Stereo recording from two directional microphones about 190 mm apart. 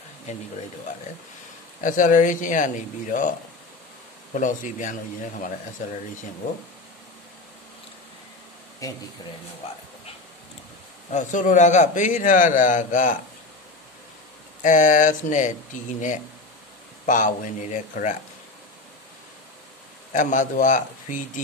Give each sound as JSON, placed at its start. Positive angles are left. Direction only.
{"t": 0.3, "sound": "speech", "side_deg": 40}
{"t": 1.8, "sound": "a man's voice", "side_deg": 45}
{"t": 8.8, "sound": "speech", "side_deg": 15}
{"t": 11.1, "sound": "a man's voice", "side_deg": 40}
{"t": 14.6, "sound": "a man's voice", "side_deg": 45}
{"t": 20.1, "sound": "a man's voice", "side_deg": 40}